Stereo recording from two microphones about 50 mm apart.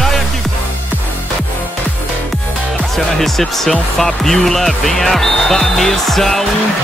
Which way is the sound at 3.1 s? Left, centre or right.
Centre.